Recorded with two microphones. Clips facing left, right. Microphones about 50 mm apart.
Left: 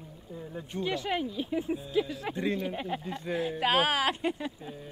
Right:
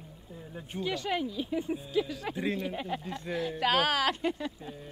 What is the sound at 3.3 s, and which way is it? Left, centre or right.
Speech, left.